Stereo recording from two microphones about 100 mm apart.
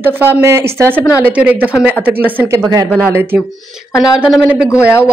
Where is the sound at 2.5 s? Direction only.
35° right (ahead or behind).